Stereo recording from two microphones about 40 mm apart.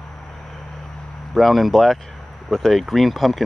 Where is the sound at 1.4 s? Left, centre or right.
Centre.